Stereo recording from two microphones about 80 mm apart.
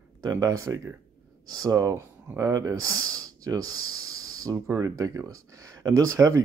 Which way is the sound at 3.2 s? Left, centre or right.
Right.